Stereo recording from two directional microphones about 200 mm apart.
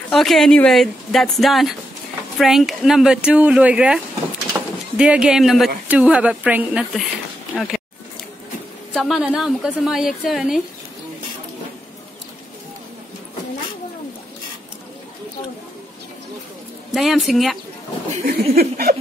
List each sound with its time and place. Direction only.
0.1 s a woman's voice: centre (ahead or behind)
8.9 s a woman's voice: centre (ahead or behind)
16.9 s a woman's voice: centre (ahead or behind)
18.2 s speech: 50° right (ahead or behind)